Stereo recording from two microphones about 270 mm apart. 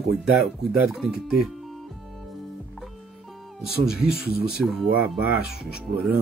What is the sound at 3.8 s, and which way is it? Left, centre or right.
Speech, centre.